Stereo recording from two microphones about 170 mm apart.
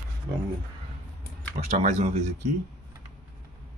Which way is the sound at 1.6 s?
45° right (ahead or behind).